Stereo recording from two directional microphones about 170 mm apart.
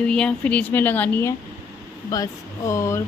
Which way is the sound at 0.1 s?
5° left (ahead or behind).